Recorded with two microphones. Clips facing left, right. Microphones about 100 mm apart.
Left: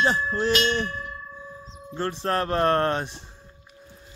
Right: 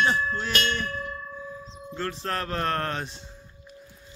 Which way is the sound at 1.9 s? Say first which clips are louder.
Left 5 dB; 30° left (ahead or behind).